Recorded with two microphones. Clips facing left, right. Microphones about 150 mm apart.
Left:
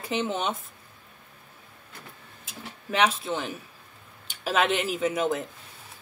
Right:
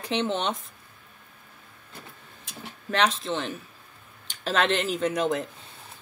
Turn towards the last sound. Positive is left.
turn(degrees=0)  # may be behind; listen again after turning